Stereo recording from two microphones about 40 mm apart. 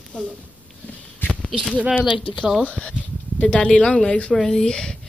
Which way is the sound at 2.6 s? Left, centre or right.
Left.